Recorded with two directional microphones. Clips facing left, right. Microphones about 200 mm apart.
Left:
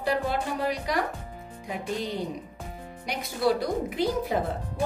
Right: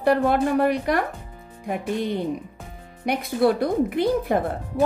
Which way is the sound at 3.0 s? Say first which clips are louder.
Right 6 dB; 55° right (ahead or behind).